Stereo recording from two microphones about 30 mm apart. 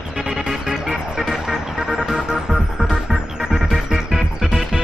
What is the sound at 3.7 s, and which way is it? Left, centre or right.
Music, centre.